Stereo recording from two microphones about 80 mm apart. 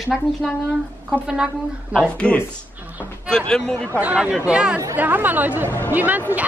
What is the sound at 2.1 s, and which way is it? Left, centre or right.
A man's voice, centre.